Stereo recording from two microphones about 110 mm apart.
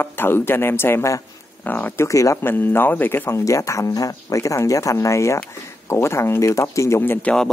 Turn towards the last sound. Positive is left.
turn(degrees=10)  # may be behind; listen again after turning